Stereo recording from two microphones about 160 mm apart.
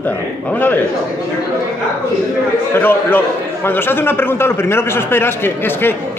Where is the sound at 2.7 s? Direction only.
10° left (ahead or behind).